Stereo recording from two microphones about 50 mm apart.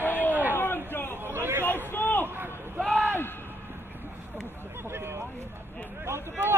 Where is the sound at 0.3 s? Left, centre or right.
Right.